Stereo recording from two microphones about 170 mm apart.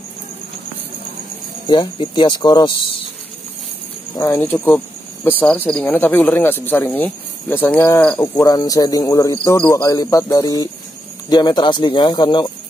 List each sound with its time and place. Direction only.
1.7 s speech: 25° left (ahead or behind)
4.2 s speech: 20° left (ahead or behind)
4.6 s speech: 5° left (ahead or behind); by 12.5 s 25° left (ahead or behind)